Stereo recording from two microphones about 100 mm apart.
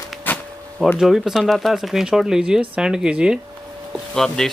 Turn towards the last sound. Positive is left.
turn(degrees=5)  # may be behind; listen again after turning